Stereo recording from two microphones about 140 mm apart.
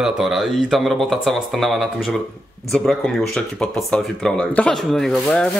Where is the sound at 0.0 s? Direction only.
Centre (ahead or behind).